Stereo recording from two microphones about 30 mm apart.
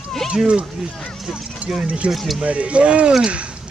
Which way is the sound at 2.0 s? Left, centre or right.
Right.